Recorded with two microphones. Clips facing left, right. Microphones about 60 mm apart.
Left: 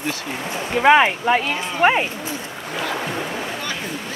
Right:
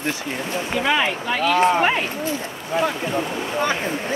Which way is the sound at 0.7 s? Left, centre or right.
Left.